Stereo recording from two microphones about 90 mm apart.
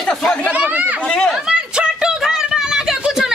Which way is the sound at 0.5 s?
15° right (ahead or behind).